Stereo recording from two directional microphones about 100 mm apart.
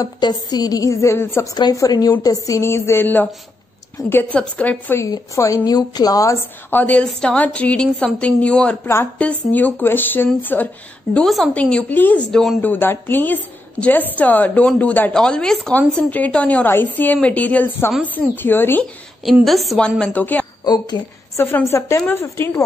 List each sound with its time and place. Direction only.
0.0 s a woman's voice: 45° left (ahead or behind); by 1.5 s 25° left (ahead or behind)
1.5 s a woman's voice: 40° left (ahead or behind); by 5.0 s 20° left (ahead or behind)
5.0 s a woman's voice: 35° left (ahead or behind)
6.7 s a woman's voice: 15° left (ahead or behind)
8.8 s speech: 25° left (ahead or behind)
11.1 s a woman's voice: centre (ahead or behind)
11.5 s a woman's voice: 10° left (ahead or behind)
12.3 s a woman's voice: 5° left (ahead or behind)
12.6 s a woman's voice: 20° left (ahead or behind)
19.4 s a woman's voice: centre (ahead or behind)
19.8 s a woman's voice: 15° left (ahead or behind)
20.6 s a woman's voice: 45° left (ahead or behind)
21.4 s speech: 25° left (ahead or behind)